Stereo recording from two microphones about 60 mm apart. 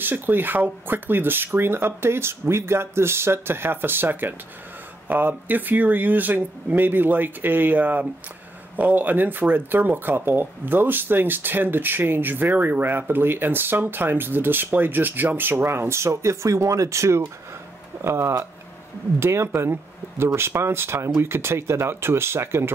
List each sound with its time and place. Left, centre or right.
0.0 s speech: right